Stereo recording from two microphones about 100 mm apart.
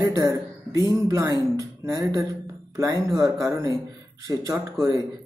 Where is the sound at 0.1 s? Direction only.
40° right (ahead or behind).